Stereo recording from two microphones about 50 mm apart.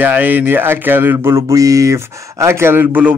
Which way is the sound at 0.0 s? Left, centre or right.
Right.